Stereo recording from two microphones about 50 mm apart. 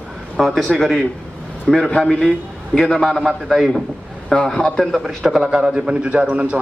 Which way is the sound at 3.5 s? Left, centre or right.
Centre.